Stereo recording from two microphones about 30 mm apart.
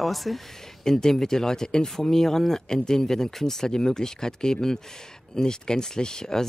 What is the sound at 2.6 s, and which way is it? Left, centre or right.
Speech, left.